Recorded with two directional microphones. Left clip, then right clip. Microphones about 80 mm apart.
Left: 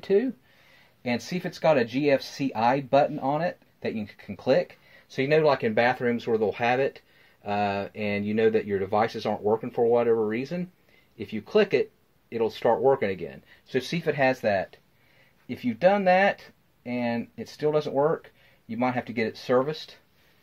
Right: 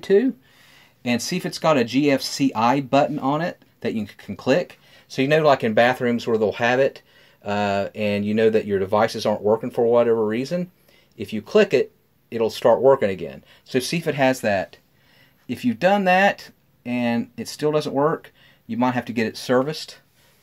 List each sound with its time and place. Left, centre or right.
0.0 s speech: right